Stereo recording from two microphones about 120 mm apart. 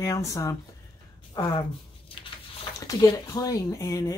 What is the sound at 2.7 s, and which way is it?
Speech, 30° left (ahead or behind).